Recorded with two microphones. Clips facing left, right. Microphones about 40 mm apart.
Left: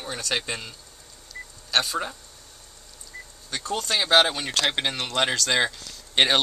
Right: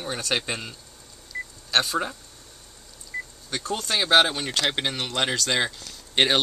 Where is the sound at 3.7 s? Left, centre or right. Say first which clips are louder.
Even; centre.